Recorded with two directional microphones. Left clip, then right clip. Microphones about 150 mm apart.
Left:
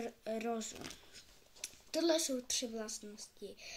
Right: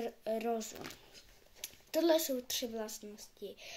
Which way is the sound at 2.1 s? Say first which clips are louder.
Right 3 dB; 50° right (ahead or behind).